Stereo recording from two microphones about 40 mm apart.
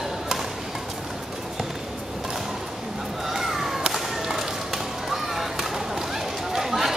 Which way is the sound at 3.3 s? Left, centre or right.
Centre.